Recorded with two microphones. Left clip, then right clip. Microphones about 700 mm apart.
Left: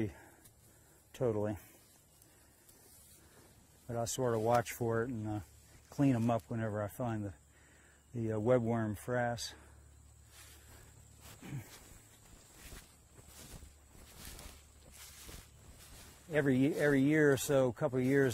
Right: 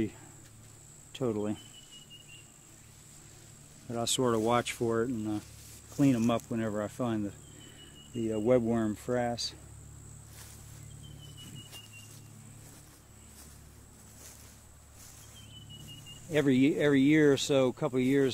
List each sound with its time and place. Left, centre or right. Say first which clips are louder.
1.1 s speech: right 2 dB; left
3.9 s speech: right 5 dB; left
8.3 s speech: right 4 dB; left
16.3 s speech: right 5 dB; left